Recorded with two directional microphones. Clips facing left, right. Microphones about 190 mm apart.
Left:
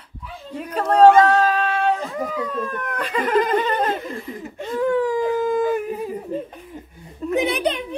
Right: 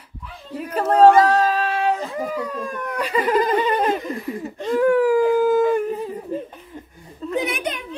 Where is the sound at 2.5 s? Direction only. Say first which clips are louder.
Left 1 dB; 10° right (ahead or behind).